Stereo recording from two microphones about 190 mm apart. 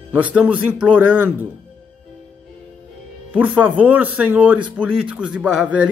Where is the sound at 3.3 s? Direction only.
5° right (ahead or behind).